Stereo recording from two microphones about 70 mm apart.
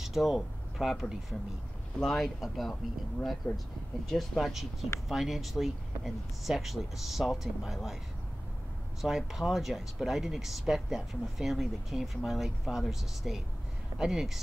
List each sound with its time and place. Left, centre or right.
0.0 s speech: centre
3.4 s speech: left
4.1 s speech: centre
9.0 s speech: centre